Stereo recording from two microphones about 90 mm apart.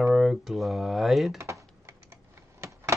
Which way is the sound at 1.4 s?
35° right (ahead or behind).